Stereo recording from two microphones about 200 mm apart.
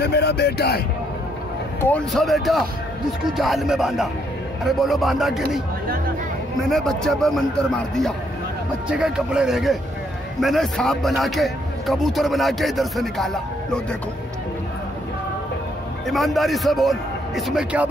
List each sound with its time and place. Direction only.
0.0 s speech: 55° left (ahead or behind)
1.8 s a man's voice: 5° left (ahead or behind)
6.7 s a man's voice: centre (ahead or behind)
16.1 s a man's voice: centre (ahead or behind)